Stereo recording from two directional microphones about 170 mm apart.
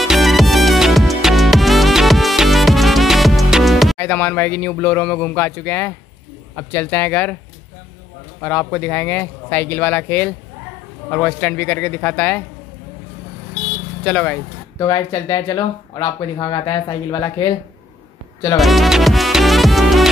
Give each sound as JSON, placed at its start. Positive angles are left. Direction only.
{"t": 0.0, "sound": "music", "side_deg": 0}
{"t": 4.0, "sound": "speech", "side_deg": 10}
{"t": 8.4, "sound": "speech", "side_deg": 10}
{"t": 14.0, "sound": "speech", "side_deg": 10}
{"t": 14.8, "sound": "speech", "side_deg": 20}
{"t": 18.6, "sound": "music", "side_deg": 0}